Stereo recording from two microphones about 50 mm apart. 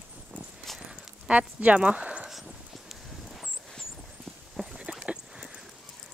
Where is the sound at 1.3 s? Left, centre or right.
Right.